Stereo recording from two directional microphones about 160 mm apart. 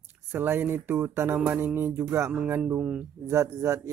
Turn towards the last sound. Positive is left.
turn(degrees=-20)  # may be behind; listen again after turning